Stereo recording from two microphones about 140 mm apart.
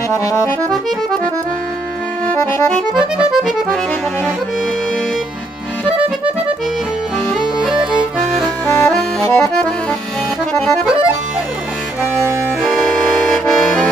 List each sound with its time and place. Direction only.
0.1 s accordion: 20° left (ahead or behind)
2.4 s accordion: 15° left (ahead or behind)
2.9 s accordion: 5° right (ahead or behind)
7.5 s music: 5° right (ahead or behind)
12.6 s accordion: 5° left (ahead or behind)